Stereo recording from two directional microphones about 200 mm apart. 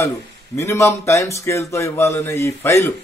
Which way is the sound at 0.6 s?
15° left (ahead or behind).